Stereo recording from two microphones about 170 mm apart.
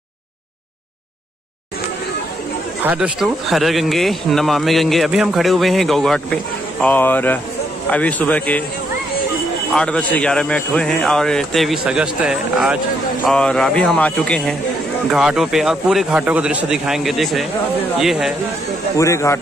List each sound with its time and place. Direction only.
2.8 s a man's voice: 5° right (ahead or behind); by 8.6 s 10° left (ahead or behind)
9.8 s speech: 5° left (ahead or behind)
18.9 s a man's voice: 15° left (ahead or behind)